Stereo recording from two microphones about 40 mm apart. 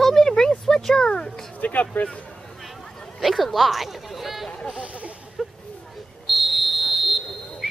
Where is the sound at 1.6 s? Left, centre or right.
Left.